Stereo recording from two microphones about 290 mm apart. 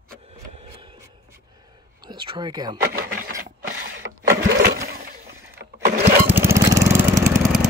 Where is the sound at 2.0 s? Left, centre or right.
Centre.